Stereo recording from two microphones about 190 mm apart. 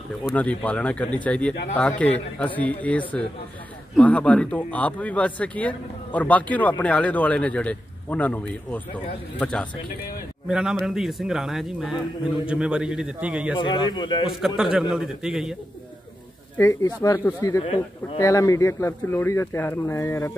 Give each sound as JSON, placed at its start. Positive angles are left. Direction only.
{"t": 0.4, "sound": "a man's voice", "side_deg": 5}
{"t": 13.6, "sound": "a man's voice", "side_deg": 25}
{"t": 14.6, "sound": "a man's voice", "side_deg": -5}
{"t": 16.5, "sound": "speech", "side_deg": 15}
{"t": 17.6, "sound": "a man's voice", "side_deg": 25}
{"t": 18.2, "sound": "speech", "side_deg": 15}